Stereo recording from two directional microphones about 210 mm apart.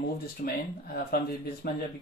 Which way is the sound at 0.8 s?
45° left (ahead or behind).